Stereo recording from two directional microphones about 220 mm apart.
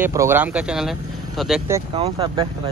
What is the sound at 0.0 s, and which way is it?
A man's voice, 10° right (ahead or behind).